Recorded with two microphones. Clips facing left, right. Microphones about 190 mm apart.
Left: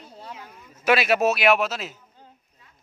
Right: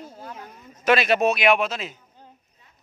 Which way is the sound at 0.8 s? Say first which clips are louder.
Right 1 dB; 5° left (ahead or behind).